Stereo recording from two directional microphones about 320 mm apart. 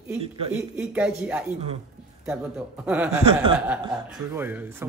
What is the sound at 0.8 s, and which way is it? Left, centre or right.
Speech, centre.